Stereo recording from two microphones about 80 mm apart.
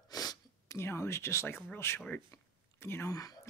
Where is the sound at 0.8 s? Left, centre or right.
Left.